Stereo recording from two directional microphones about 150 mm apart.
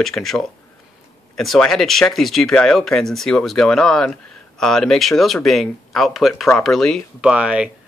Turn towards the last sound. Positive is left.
turn(degrees=-10)  # may be behind; listen again after turning